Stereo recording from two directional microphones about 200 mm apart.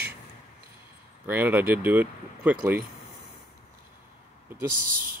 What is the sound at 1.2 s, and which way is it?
Speech, 10° right (ahead or behind).